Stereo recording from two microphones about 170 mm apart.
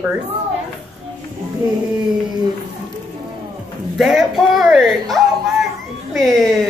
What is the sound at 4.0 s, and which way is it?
A woman's voice, centre (ahead or behind).